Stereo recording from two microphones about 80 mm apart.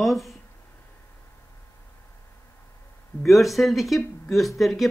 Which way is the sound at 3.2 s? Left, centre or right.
Centre.